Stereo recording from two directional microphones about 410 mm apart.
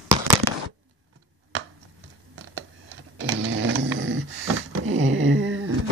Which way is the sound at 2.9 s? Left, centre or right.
Right.